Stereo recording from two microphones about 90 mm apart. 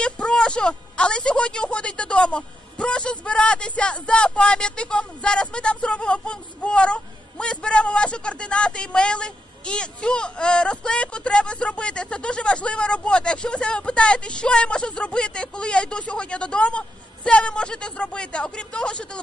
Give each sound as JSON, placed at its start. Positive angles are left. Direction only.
{"t": 0.0, "sound": "speech", "side_deg": 10}